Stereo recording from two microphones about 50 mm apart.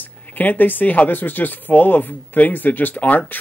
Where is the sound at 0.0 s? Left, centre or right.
Left.